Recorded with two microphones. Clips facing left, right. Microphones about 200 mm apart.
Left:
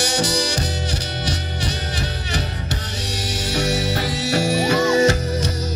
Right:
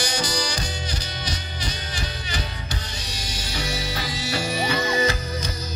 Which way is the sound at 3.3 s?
80° left.